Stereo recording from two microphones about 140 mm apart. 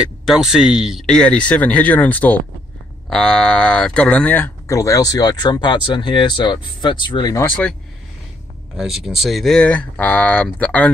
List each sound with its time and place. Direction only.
0.0 s speech: 5° right (ahead or behind)
1.0 s speech: 5° left (ahead or behind)
4.7 s speech: 25° left (ahead or behind)
7.3 s speech: 10° left (ahead or behind)
8.7 s speech: centre (ahead or behind)